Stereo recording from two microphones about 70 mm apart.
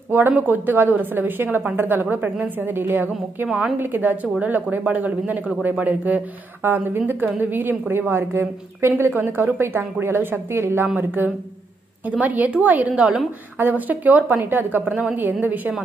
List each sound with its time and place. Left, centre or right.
0.1 s a woman's voice: right
3.4 s a woman's voice: centre
3.7 s a woman's voice: right
13.6 s a woman's voice: right